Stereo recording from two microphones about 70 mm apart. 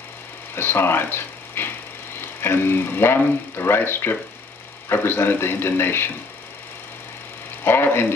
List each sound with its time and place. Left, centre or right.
0.6 s a man's voice: left
7.6 s a man's voice: left